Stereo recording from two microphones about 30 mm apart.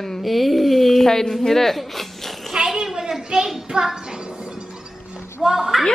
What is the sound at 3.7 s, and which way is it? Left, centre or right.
Speech, right.